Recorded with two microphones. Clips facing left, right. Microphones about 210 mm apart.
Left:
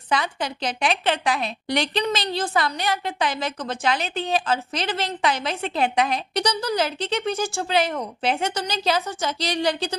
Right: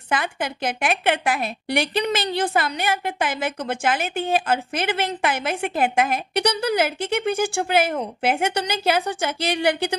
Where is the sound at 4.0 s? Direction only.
50° right (ahead or behind).